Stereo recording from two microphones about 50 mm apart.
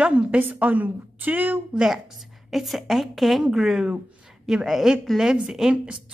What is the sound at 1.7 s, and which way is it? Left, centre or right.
Speech, centre.